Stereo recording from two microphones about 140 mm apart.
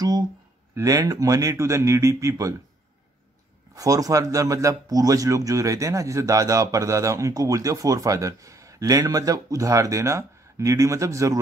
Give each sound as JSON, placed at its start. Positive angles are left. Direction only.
{"t": 0.7, "sound": "a man's voice", "side_deg": -25}
{"t": 3.7, "sound": "a man's voice", "side_deg": -25}